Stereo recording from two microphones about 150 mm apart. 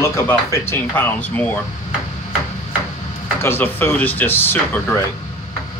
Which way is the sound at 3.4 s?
15° left (ahead or behind).